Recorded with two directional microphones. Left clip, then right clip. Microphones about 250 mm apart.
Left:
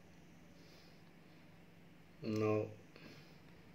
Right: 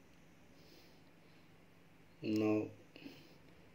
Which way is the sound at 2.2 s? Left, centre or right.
Right.